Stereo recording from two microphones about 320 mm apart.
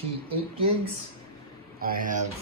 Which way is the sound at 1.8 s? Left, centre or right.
Right.